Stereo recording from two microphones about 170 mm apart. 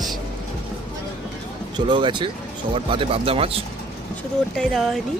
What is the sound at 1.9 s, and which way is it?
Speech, 30° right (ahead or behind).